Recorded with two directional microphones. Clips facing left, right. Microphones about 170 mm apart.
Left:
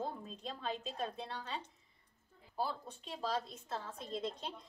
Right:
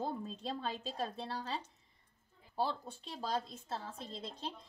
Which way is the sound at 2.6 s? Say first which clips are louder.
Right 3 dB; 35° right (ahead or behind).